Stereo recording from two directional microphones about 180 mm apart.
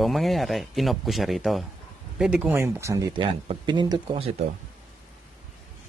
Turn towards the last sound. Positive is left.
turn(degrees=-25)  # may be behind; listen again after turning